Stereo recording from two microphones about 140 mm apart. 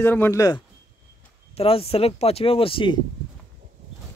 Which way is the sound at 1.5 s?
45° left (ahead or behind).